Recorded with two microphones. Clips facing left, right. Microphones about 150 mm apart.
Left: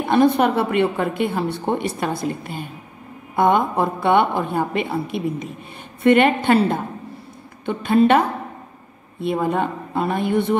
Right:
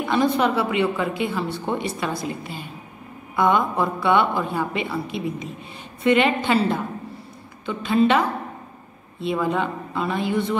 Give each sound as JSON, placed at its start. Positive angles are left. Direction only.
{"t": 0.0, "sound": "a woman's voice", "side_deg": 55}